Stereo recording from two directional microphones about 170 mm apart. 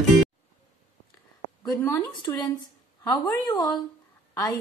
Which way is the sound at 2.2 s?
25° left (ahead or behind).